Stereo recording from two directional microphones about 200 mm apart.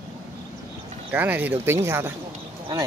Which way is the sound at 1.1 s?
10° right (ahead or behind).